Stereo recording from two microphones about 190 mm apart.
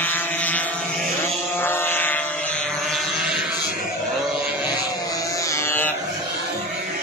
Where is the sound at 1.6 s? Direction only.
10° left (ahead or behind).